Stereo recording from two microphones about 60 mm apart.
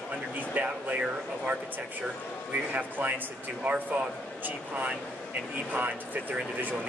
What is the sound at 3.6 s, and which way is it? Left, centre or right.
Speech, right.